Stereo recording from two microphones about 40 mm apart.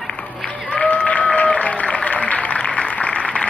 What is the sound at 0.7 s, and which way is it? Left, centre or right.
Applause, left.